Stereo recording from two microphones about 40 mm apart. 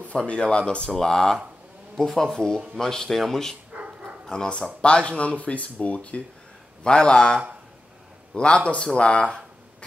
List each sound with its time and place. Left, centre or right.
0.3 s speech: left
0.8 s speech: centre
3.7 s dog: right
4.8 s speech: left
6.8 s speech: left
8.4 s speech: left